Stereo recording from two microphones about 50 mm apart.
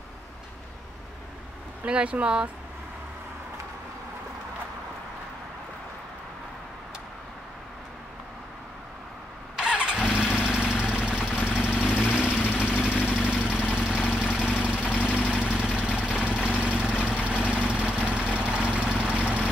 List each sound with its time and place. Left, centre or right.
1.9 s speech: right
9.6 s vehicle: centre
12.4 s vehicle: left
12.8 s vehicle: centre